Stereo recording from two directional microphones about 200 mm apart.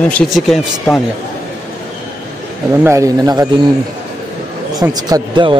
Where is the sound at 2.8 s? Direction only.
15° right (ahead or behind).